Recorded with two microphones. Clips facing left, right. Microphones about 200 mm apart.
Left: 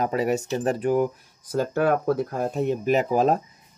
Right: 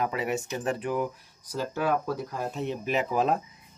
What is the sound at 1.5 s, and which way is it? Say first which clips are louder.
Speech: left 6 dB; 55° left (ahead or behind).